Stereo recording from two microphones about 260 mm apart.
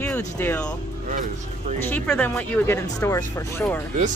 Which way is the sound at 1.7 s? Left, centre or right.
Centre.